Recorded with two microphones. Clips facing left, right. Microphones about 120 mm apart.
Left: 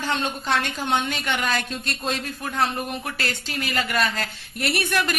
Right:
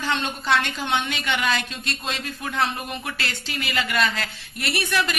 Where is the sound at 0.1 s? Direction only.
40° left (ahead or behind).